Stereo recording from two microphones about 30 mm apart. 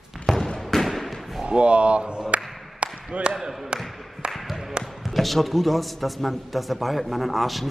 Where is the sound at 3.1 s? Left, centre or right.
Right.